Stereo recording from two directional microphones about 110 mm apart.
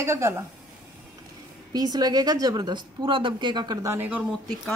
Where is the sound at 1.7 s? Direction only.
35° right (ahead or behind).